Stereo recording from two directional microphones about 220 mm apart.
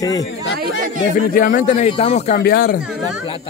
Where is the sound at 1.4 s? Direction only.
35° left (ahead or behind).